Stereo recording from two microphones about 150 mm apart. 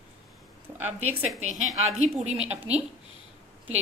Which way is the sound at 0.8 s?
45° right (ahead or behind).